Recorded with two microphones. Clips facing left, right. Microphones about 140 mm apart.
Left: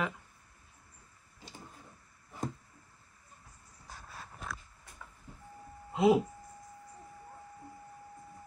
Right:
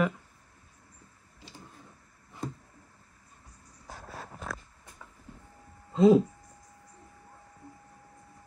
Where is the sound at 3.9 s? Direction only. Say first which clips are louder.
Right 6 dB; 50° right (ahead or behind).